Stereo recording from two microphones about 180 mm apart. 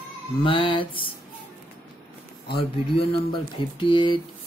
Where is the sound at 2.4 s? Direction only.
30° left (ahead or behind).